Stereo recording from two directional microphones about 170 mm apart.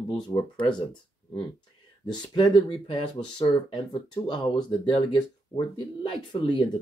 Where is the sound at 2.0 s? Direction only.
25° left (ahead or behind).